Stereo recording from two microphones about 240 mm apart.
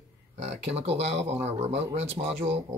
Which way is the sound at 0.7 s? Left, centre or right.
Right.